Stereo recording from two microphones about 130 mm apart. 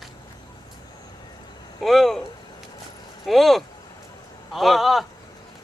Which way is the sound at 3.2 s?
Centre (ahead or behind).